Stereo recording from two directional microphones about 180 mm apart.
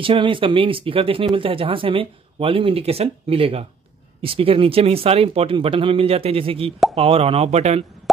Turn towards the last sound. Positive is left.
turn(degrees=-35)  # may be behind; listen again after turning